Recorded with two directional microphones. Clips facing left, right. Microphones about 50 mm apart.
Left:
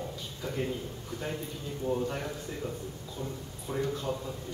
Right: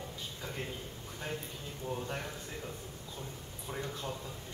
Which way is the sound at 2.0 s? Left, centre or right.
Centre.